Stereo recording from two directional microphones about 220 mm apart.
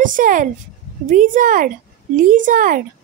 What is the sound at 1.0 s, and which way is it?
A woman's voice, 35° right (ahead or behind).